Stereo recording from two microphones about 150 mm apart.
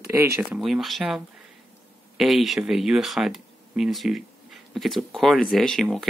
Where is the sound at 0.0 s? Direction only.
20° right (ahead or behind).